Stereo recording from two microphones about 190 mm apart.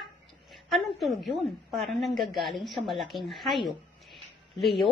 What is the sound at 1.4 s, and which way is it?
A woman's voice, centre (ahead or behind).